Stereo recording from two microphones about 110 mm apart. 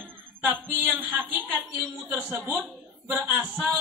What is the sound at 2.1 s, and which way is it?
Speech, 15° right (ahead or behind).